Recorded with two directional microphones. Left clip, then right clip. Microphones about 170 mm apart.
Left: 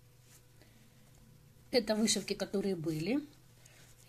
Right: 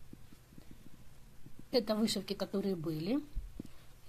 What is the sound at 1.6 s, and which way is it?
Speech, 5° left (ahead or behind).